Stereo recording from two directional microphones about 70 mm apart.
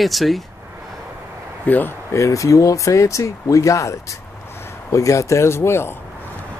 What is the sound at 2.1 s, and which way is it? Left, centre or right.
Speech, left.